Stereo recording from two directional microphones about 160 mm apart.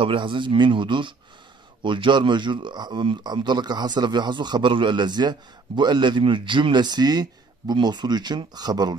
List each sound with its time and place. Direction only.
0.0 s a man's voice: 30° right (ahead or behind)